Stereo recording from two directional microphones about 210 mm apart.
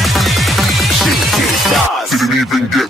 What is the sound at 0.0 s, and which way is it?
Music, centre (ahead or behind).